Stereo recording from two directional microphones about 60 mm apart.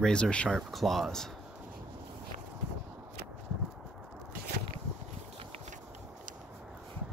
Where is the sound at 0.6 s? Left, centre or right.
Centre.